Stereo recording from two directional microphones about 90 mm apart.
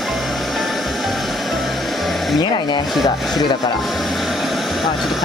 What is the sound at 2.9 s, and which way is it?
Speech, centre (ahead or behind).